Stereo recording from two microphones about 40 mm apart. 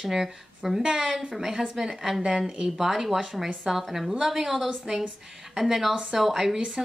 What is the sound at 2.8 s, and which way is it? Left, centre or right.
Speech, centre.